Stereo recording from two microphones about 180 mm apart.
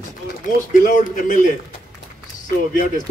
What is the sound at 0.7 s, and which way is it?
Speech, 50° left (ahead or behind).